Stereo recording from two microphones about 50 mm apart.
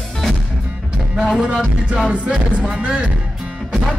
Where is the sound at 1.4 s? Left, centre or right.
Centre.